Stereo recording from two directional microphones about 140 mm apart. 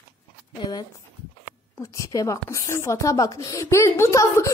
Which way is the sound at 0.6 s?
35° left (ahead or behind).